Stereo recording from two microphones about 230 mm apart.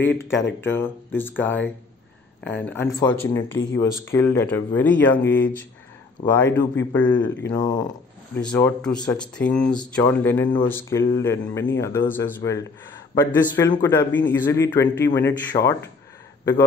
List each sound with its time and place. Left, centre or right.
0.0 s a man's voice: centre
8.4 s a man's voice: centre